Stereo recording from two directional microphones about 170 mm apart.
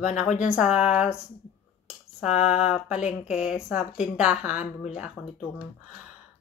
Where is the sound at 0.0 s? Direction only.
45° left (ahead or behind).